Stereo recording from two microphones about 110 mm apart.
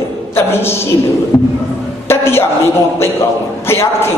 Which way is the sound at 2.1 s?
25° left (ahead or behind).